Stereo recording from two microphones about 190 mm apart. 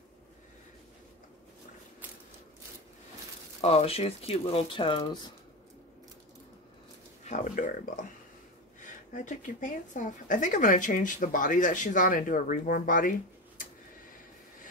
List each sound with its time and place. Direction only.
3.6 s speech: 30° left (ahead or behind)
7.2 s speech: 40° left (ahead or behind)